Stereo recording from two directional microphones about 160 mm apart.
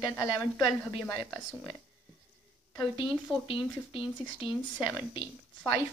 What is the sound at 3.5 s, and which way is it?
Speech, 35° left (ahead or behind).